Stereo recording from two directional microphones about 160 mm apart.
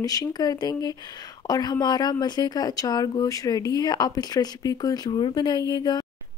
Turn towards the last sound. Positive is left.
turn(degrees=25)  # may be behind; listen again after turning